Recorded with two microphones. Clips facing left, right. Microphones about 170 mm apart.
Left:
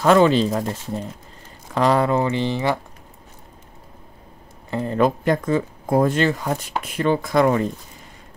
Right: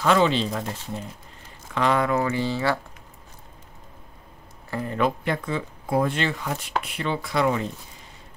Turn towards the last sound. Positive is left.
turn(degrees=50)  # may be behind; listen again after turning